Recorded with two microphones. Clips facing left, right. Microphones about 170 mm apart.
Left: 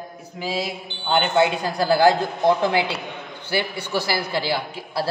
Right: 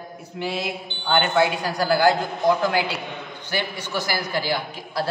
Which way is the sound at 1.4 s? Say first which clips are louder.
Left 1 dB; 25° left (ahead or behind).